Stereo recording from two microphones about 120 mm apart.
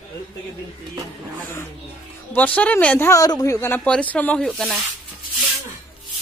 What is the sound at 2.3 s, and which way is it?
A man's voice, 10° left (ahead or behind).